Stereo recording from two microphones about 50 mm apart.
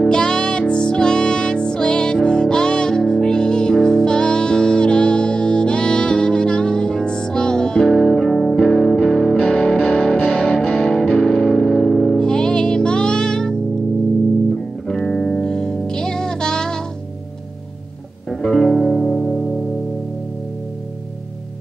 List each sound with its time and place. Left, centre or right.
0.1 s music: centre
8.3 s music: centre
9.8 s music: centre
10.9 s music: centre
15.0 s music: centre
15.4 s music: centre
18.4 s music: centre